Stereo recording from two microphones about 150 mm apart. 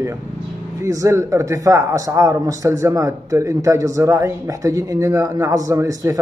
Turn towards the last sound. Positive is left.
turn(degrees=-20)  # may be behind; listen again after turning